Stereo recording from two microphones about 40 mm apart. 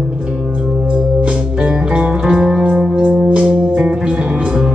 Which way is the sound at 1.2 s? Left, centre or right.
Right.